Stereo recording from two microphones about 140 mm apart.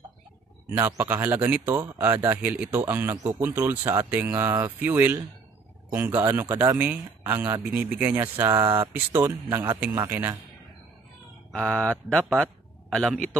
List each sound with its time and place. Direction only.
0.7 s a man's voice: 15° right (ahead or behind)
11.5 s a man's voice: 5° left (ahead or behind)